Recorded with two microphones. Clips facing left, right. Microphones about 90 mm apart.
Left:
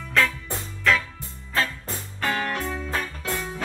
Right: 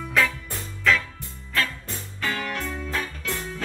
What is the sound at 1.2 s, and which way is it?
Music, 30° left (ahead or behind).